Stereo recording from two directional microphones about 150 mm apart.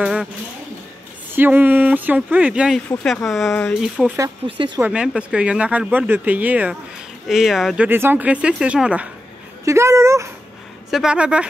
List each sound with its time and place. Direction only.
0.0 s a sound: 5° right (ahead or behind)
1.3 s speech: 15° right (ahead or behind); by 3.9 s 5° left (ahead or behind)
4.4 s speech: 40° right (ahead or behind)
4.7 s speech: 10° right (ahead or behind)
9.7 s speech: 20° right (ahead or behind)
10.9 s speech: 5° right (ahead or behind)